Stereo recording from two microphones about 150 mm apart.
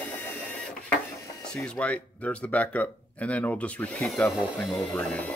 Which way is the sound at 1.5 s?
5° left (ahead or behind).